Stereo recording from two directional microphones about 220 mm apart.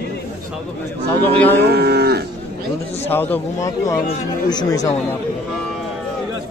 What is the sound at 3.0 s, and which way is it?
Speech, 10° left (ahead or behind).